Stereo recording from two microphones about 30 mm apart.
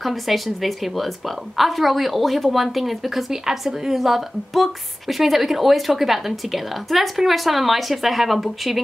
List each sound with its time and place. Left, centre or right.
0.0 s a woman's voice: centre